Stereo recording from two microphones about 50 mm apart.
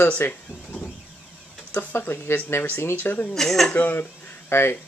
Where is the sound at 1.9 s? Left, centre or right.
Left.